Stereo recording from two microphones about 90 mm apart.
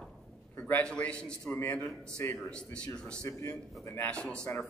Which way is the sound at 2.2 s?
25° left (ahead or behind).